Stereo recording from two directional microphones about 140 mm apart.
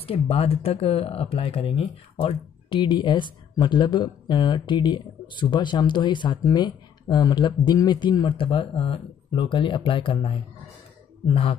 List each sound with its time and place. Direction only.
0.0 s speech: 45° left (ahead or behind)